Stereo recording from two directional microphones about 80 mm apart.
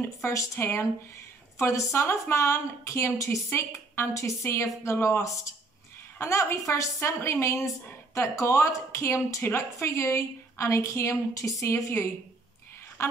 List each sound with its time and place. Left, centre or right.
0.0 s speech: left